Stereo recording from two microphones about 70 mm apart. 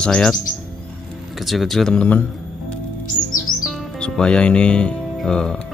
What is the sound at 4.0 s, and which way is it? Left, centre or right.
Speech, centre.